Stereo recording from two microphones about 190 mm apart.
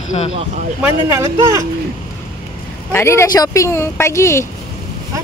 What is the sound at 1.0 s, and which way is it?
Speech, 15° right (ahead or behind).